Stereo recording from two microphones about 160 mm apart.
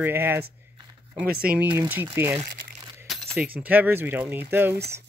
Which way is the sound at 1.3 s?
70° right (ahead or behind).